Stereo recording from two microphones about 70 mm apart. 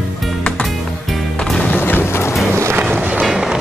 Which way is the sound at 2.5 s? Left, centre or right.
Right.